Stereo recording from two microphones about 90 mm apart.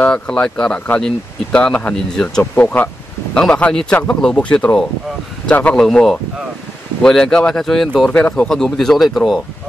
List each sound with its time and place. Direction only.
0.0 s speech: 10° left (ahead or behind)
5.9 s speech: centre (ahead or behind)